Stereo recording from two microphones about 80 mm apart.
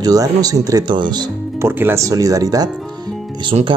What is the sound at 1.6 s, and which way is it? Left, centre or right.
Speech, right.